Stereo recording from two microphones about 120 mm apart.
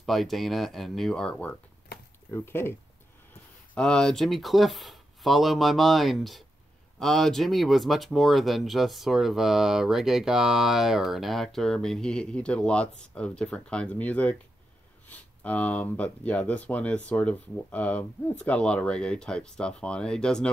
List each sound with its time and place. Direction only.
0.0 s speech: centre (ahead or behind)
2.3 s speech: 20° left (ahead or behind)
3.7 s speech: 5° left (ahead or behind)